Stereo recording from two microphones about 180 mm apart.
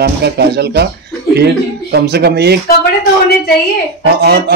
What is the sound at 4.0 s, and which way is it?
Speech, 65° right (ahead or behind).